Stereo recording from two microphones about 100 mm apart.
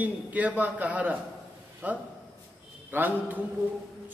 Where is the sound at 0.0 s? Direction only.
15° right (ahead or behind).